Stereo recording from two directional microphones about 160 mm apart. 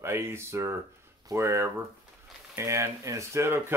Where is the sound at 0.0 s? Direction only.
15° right (ahead or behind).